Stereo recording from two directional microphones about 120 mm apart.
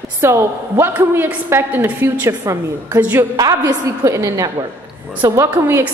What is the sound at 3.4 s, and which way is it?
A woman's voice, 30° right (ahead or behind).